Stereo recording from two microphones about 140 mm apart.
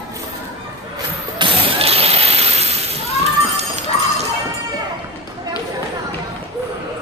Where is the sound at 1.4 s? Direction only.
40° right (ahead or behind).